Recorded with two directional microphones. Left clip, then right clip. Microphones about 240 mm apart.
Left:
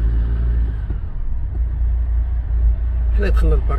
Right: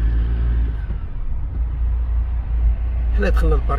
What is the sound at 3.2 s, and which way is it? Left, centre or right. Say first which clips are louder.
Vehicle: right 2 dB; right.